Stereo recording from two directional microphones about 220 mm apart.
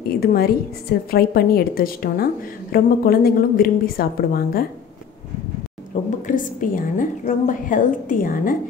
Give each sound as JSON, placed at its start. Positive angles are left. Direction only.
{"t": 0.2, "sound": "a woman's voice", "side_deg": 45}
{"t": 6.2, "sound": "a woman's voice", "side_deg": 35}